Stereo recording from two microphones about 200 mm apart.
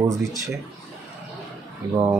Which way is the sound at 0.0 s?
15° right (ahead or behind).